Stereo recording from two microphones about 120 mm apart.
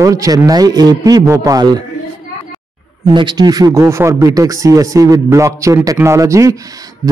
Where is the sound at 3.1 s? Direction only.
40° right (ahead or behind).